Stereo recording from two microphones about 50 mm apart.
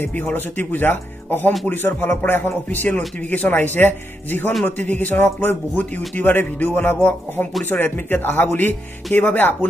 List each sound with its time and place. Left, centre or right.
0.1 s speech: left